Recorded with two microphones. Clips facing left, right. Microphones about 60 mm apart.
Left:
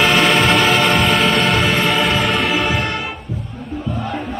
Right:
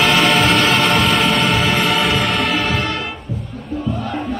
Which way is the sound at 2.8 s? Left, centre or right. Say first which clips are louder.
Even; centre.